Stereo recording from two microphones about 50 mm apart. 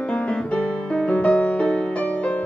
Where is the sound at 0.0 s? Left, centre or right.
Left.